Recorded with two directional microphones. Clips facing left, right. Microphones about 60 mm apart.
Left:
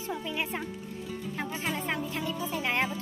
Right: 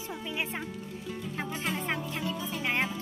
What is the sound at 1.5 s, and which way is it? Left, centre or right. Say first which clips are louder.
Music: even; centre.